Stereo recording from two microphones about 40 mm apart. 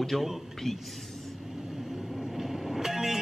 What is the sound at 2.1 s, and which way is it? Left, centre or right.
Vehicle, centre.